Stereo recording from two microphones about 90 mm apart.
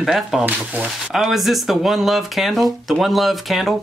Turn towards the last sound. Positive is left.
turn(degrees=0)  # may be behind; listen again after turning